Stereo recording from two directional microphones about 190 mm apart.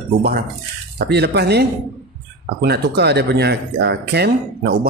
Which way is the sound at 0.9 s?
60° right (ahead or behind).